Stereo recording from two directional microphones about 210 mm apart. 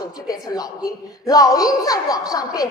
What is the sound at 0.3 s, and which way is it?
A woman's voice, 20° left (ahead or behind).